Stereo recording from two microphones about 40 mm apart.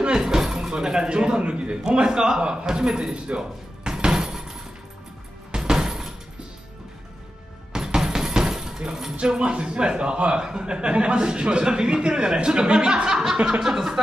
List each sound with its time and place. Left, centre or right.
0.0 s a man's voice: centre
3.3 s music: centre
7.7 s a sound: centre
9.2 s a man's voice: right